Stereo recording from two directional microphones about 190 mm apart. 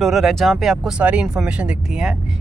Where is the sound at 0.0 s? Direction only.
Centre (ahead or behind).